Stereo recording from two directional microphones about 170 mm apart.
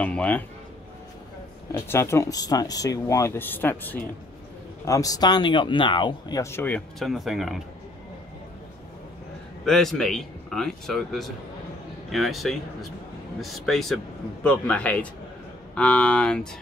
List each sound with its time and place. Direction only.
0.0 s music: 10° left (ahead or behind)
1.7 s speech: 15° left (ahead or behind); by 7.6 s centre (ahead or behind)
9.7 s a man's voice: centre (ahead or behind)